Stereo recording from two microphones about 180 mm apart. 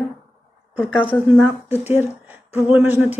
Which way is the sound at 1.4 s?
10° right (ahead or behind).